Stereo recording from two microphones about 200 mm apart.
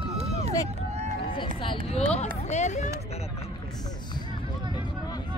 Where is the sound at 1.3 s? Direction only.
30° left (ahead or behind).